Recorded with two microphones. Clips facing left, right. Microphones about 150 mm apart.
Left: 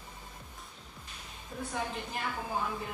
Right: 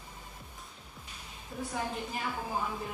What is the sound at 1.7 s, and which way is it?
A woman's voice, 5° right (ahead or behind).